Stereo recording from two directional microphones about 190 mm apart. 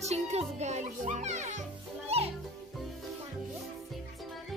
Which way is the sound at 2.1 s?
30° right (ahead or behind).